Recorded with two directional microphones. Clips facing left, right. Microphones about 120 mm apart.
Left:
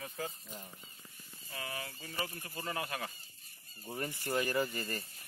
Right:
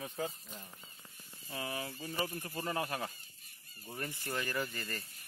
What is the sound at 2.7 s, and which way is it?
Speech, 25° right (ahead or behind).